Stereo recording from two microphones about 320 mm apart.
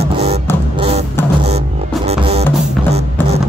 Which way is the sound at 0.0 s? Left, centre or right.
Centre.